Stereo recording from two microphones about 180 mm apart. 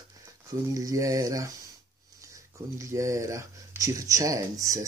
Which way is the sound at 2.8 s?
15° right (ahead or behind).